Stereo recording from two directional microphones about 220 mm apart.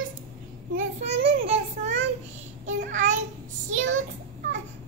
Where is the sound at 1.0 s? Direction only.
25° right (ahead or behind).